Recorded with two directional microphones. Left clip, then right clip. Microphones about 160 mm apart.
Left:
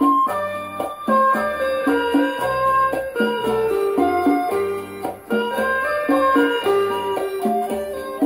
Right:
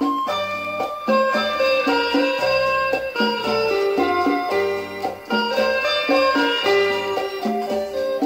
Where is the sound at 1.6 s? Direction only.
25° right (ahead or behind).